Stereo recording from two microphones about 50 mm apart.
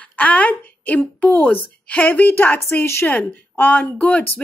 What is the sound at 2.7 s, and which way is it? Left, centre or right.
Speech, left.